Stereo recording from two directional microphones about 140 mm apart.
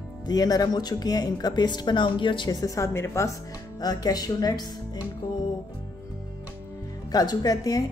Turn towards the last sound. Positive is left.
turn(degrees=30)  # may be behind; listen again after turning